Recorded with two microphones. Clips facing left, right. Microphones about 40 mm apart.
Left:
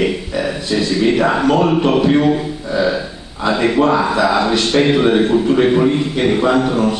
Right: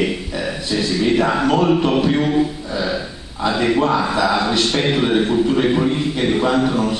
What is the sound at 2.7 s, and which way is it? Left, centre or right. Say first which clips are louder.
Burping: left 7 dB; centre.